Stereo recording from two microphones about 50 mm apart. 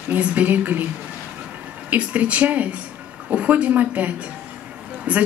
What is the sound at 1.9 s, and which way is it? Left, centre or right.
Speech, right.